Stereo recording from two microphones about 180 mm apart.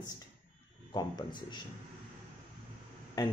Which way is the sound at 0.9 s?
25° left (ahead or behind).